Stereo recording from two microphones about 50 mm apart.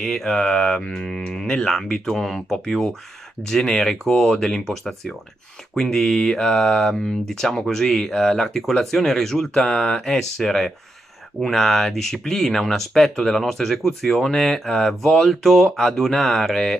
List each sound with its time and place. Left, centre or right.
0.0 s speech: centre